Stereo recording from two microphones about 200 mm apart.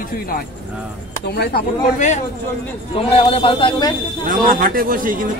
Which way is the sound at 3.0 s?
30° left (ahead or behind).